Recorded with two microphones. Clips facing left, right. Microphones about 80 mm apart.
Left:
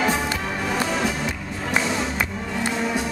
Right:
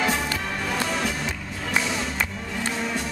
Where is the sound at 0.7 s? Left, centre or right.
Centre.